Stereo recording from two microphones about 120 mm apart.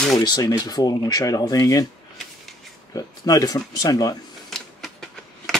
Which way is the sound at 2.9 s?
30° left (ahead or behind).